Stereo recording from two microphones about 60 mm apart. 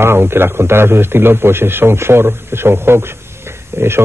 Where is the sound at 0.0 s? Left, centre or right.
Right.